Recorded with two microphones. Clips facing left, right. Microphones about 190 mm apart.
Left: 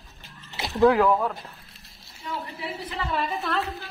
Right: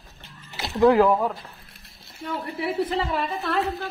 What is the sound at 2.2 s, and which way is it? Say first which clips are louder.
Speech: right 5 dB; 60° right (ahead or behind).